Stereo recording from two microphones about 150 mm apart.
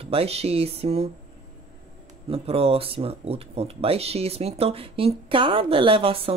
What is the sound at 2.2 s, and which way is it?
Speech, 40° right (ahead or behind).